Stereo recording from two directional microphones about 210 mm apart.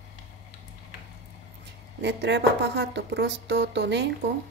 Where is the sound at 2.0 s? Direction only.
55° right (ahead or behind).